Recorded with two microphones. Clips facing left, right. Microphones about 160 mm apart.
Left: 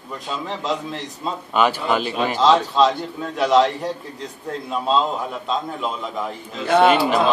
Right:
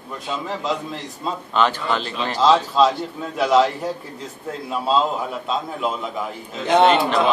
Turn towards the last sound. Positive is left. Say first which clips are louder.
# even
turn(degrees=10)  # may be behind; listen again after turning